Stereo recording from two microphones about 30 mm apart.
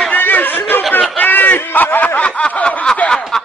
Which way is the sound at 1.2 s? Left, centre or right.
Left.